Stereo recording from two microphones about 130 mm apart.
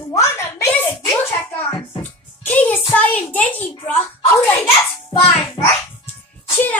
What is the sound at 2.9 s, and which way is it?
Child singing, 10° left (ahead or behind).